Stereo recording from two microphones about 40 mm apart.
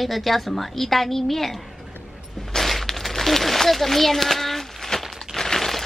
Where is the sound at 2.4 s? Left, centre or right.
Centre.